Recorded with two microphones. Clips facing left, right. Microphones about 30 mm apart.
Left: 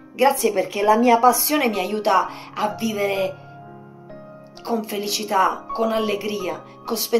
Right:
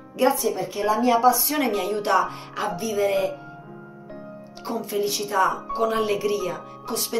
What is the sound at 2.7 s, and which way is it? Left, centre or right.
Speech, left.